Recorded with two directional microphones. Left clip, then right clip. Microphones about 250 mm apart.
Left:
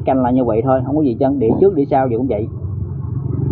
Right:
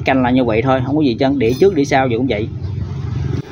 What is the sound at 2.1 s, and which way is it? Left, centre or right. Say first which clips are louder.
Speech: right 1 dB; centre.